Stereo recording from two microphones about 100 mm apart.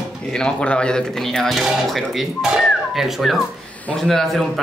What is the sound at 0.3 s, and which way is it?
A man's voice, 10° left (ahead or behind).